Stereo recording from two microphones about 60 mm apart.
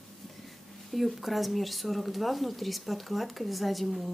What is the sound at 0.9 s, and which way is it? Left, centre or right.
Speech, centre.